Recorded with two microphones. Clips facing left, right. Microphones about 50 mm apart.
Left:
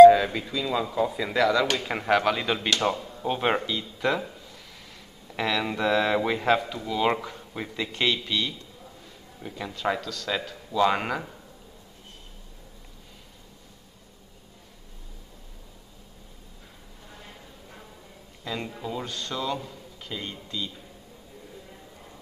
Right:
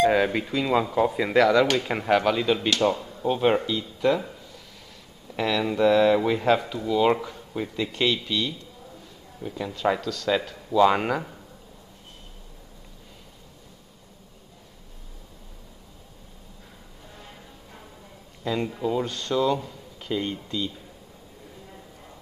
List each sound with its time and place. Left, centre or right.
0.1 s speech: right
1.8 s speech: centre
3.3 s a man's voice: left
5.3 s speech: centre
18.5 s speech: centre
20.0 s speech: centre